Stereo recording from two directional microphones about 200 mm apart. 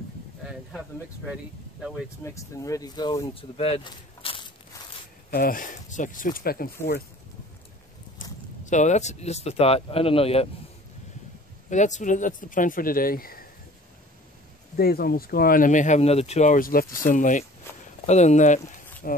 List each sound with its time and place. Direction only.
2.2 s speech: 15° left (ahead or behind)
5.3 s speech: 45° left (ahead or behind)
8.2 s a sound: 40° left (ahead or behind)
8.6 s speech: 35° left (ahead or behind)
11.7 s speech: 35° left (ahead or behind)
14.8 s speech: 50° left (ahead or behind)